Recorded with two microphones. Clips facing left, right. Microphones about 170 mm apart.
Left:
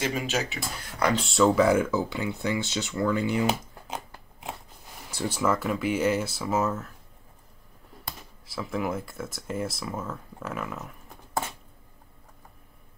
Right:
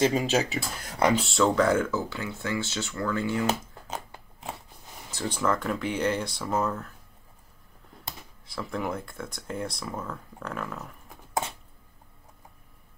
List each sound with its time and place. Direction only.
0.0 s speech: 30° right (ahead or behind)
1.1 s speech: centre (ahead or behind)
5.1 s speech: 5° left (ahead or behind)
8.5 s speech: 5° left (ahead or behind)